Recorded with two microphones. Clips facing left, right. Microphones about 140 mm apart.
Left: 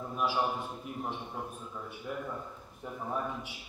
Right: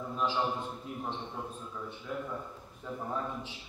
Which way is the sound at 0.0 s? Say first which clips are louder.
Even; 10° left (ahead or behind).